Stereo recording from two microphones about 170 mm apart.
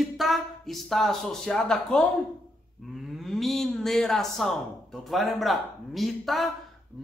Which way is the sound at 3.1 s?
Centre (ahead or behind).